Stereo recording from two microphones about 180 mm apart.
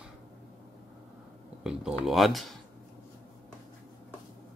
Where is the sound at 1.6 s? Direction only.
5° right (ahead or behind).